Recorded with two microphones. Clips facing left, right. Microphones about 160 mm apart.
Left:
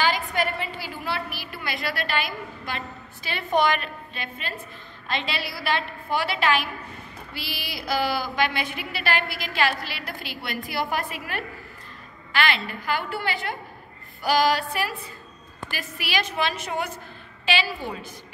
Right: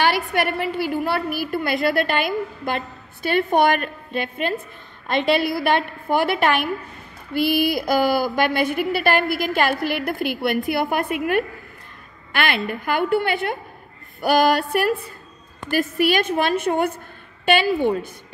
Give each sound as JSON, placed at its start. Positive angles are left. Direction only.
{"t": 0.0, "sound": "a woman's voice", "side_deg": -70}